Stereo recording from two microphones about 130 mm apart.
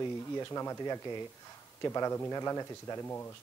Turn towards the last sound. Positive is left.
turn(degrees=20)  # may be behind; listen again after turning